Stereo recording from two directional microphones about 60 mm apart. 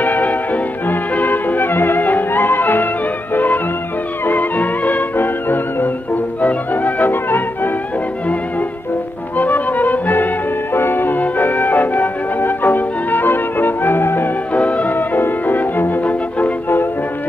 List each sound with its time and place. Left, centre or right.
0.0 s music: left
9.4 s music: left
14.5 s music: left